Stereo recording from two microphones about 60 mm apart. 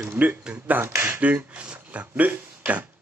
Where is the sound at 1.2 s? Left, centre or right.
Right.